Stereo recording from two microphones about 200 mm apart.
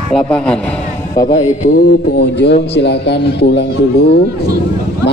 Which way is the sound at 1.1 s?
30° left (ahead or behind).